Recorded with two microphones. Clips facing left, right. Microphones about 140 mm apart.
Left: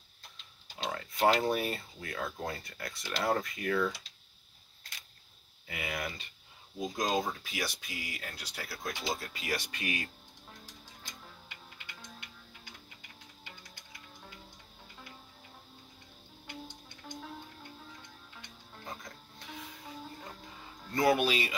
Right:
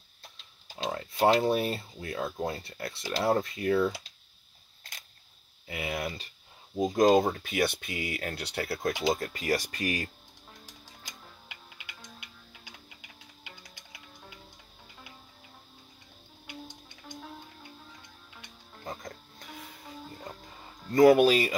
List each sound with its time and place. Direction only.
1.2 s speech: 30° right (ahead or behind)
5.7 s speech: 30° right (ahead or behind)
6.8 s speech: 55° right (ahead or behind)
9.2 s speech: 45° right (ahead or behind)
20.9 s speech: 40° right (ahead or behind)